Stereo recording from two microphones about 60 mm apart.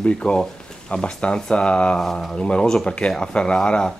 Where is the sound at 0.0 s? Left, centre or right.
Centre.